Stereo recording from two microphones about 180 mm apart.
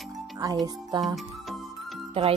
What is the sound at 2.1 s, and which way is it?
Speech, 30° right (ahead or behind).